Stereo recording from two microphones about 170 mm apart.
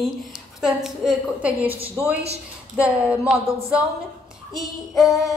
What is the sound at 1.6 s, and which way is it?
Speech, 35° right (ahead or behind).